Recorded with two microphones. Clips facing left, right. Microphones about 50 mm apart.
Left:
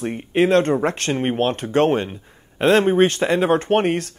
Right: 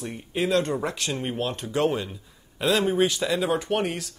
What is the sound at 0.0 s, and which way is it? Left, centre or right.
Speech, left.